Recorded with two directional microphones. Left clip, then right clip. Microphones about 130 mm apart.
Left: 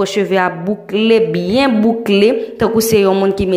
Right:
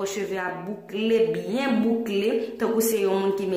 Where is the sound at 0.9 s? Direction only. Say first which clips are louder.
Left 10 dB; 50° left (ahead or behind).